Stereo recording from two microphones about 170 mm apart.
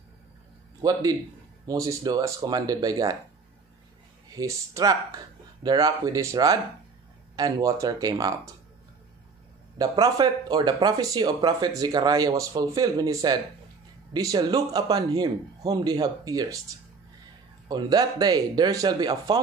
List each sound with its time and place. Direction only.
0.8 s speech: 20° right (ahead or behind)
4.4 s speech: 20° right (ahead or behind)
9.8 s speech: 20° right (ahead or behind)
17.6 s speech: 25° right (ahead or behind)